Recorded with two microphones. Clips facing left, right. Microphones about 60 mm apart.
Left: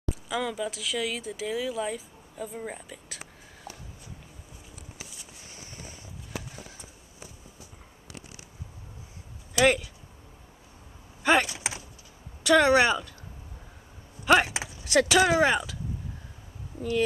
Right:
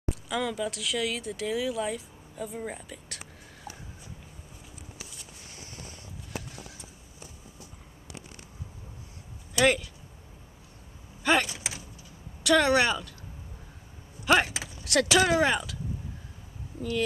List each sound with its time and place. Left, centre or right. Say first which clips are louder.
0.3 s speech: even; centre
9.6 s speech: left 1 dB; centre
11.4 s vehicle: left 2 dB; left
12.4 s a woman's voice: left 2 dB; centre
14.2 s a woman's voice: left 2 dB; centre